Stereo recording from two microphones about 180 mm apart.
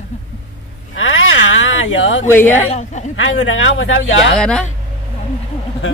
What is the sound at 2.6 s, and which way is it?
Speech, 40° left (ahead or behind).